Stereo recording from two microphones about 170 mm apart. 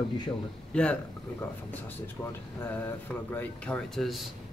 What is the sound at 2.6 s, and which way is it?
Speech, 10° left (ahead or behind).